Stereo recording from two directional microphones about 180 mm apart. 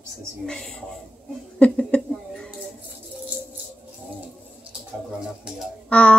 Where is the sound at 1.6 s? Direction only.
5° left (ahead or behind).